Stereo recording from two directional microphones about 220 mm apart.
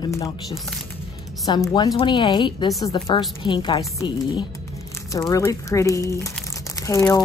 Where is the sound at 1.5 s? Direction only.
20° left (ahead or behind).